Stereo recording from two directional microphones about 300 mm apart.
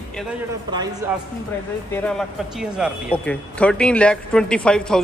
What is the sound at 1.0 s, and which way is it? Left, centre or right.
Speech, centre.